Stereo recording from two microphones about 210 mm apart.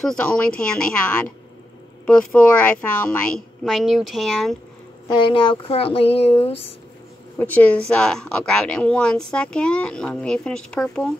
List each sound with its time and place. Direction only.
0.0 s speech: 5° left (ahead or behind)
5.0 s speech: 25° left (ahead or behind)
7.3 s a woman's voice: 10° left (ahead or behind)